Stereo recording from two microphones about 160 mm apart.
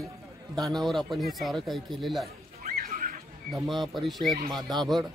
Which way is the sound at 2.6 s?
65° right (ahead or behind).